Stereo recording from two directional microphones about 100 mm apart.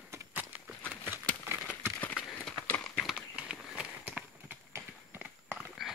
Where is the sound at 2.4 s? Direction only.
15° left (ahead or behind).